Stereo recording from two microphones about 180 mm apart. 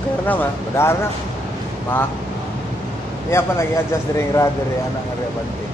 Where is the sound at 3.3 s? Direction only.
15° left (ahead or behind).